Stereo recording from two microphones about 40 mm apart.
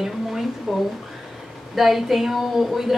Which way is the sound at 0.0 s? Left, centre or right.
Centre.